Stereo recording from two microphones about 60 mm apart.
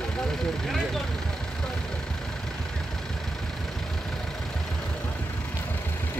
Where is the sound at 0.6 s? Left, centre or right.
Centre.